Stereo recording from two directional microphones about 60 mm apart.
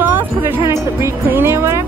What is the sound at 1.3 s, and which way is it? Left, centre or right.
Speech, right.